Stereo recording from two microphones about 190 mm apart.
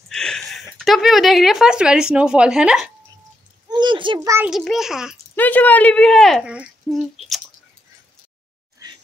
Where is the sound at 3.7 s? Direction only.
25° right (ahead or behind).